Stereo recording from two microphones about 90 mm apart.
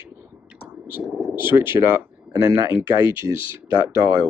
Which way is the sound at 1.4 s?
25° right (ahead or behind).